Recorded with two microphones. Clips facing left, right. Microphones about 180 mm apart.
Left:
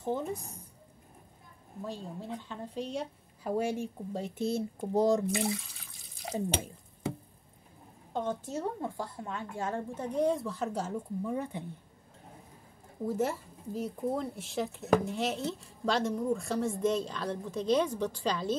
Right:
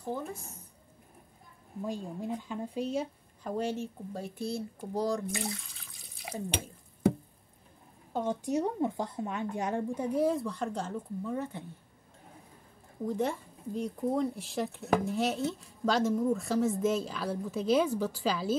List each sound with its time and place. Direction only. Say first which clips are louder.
0.0 s speech: left 3 dB; 20° left (ahead or behind)
1.9 s speech: right 4 dB; 10° right (ahead or behind)
3.4 s speech: left 2 dB; 10° left (ahead or behind)
5.3 s speech: left 5 dB; 5° left (ahead or behind)
8.1 s speech: right 3 dB; 10° right (ahead or behind); by 11.6 s 15° left (ahead or behind)
13.0 s speech: even; 5° left (ahead or behind)